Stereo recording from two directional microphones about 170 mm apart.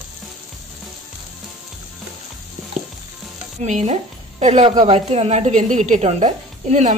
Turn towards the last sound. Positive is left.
turn(degrees=-45)  # may be behind; listen again after turning